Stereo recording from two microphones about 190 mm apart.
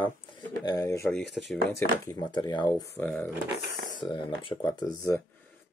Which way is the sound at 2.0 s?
20° left (ahead or behind).